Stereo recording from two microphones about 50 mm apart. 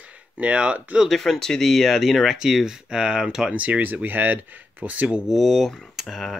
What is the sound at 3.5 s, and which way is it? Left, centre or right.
Speech, right.